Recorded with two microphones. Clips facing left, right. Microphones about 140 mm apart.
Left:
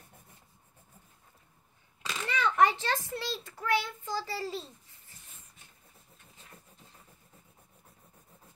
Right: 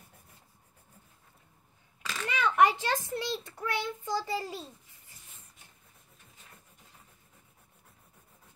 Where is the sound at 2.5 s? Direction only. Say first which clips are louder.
Right 2 dB; 15° right (ahead or behind).